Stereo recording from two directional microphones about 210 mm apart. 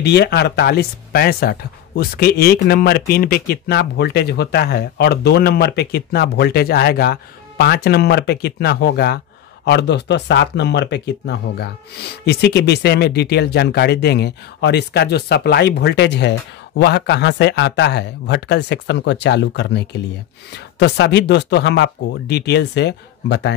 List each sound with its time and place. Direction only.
0.0 s speech: 50° left (ahead or behind)